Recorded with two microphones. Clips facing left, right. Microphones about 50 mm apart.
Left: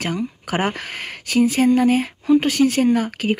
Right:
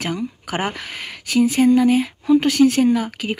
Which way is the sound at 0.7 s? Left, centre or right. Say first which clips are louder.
Left 2 dB; left.